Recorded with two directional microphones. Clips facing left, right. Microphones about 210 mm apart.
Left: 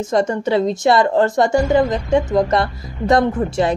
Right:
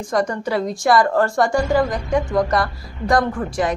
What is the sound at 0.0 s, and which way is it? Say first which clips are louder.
A woman's voice: left 3 dB; 25° left (ahead or behind).